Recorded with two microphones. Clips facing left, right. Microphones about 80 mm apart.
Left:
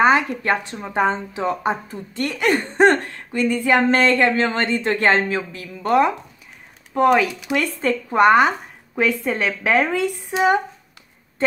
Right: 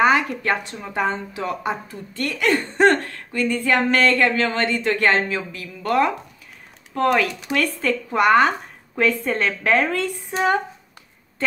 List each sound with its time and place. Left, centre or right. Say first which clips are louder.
0.0 s a woman's voice: left 1 dB; left
5.8 s speech: left 2 dB; left